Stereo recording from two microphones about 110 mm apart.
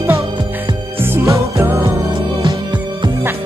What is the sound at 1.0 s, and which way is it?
Music, 25° right (ahead or behind).